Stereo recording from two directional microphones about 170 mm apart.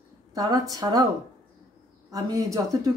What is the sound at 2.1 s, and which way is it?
Speech, 20° right (ahead or behind).